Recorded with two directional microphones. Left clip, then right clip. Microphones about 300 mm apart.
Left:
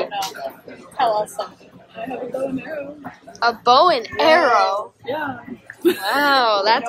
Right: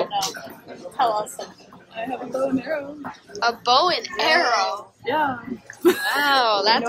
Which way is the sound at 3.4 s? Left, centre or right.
Centre.